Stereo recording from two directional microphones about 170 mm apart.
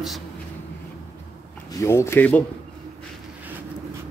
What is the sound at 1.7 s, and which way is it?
Speech, 15° left (ahead or behind).